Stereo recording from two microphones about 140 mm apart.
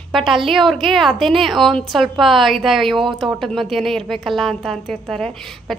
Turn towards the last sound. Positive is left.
turn(degrees=0)  # may be behind; listen again after turning